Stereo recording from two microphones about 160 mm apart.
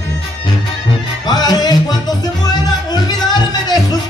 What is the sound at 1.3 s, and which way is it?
Music, 25° left (ahead or behind).